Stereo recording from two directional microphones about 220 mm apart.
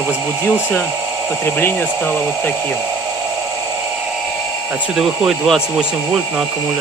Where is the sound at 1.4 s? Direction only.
10° left (ahead or behind).